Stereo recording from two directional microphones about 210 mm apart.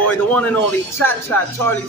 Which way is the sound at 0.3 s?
5° left (ahead or behind).